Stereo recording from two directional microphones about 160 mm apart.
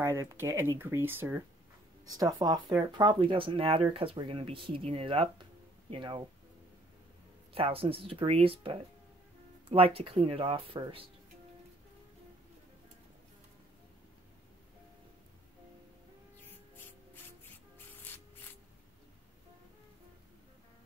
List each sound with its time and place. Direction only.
0.0 s speech: 15° right (ahead or behind)
2.0 s speech: 25° right (ahead or behind)
7.5 s speech: 35° right (ahead or behind)
16.7 s rub: 15° left (ahead or behind)